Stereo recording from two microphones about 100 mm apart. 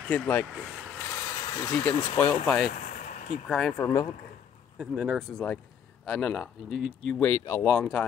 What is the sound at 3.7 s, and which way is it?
Speech, 25° left (ahead or behind).